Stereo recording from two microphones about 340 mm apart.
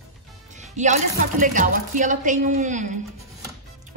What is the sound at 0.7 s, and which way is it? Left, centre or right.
Speech, right.